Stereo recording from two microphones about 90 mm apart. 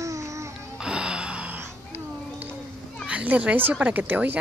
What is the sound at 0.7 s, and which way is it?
Gasp, 10° right (ahead or behind).